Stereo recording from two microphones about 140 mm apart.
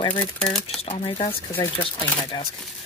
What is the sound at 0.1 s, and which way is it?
Speech, 10° left (ahead or behind).